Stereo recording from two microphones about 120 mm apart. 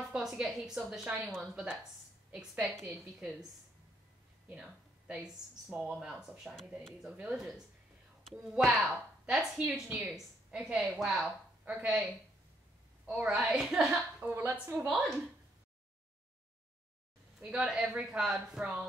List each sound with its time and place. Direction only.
0.1 s a woman's voice: 5° right (ahead or behind)
4.5 s speech: 10° right (ahead or behind)
14.2 s speech: 20° right (ahead or behind)
14.9 s speech: 5° right (ahead or behind)
17.4 s speech: 10° right (ahead or behind)